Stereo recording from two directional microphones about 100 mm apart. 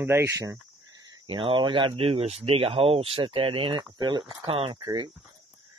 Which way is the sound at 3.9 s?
45° right (ahead or behind).